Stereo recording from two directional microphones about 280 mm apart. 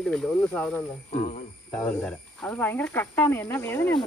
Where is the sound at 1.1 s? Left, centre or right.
Left.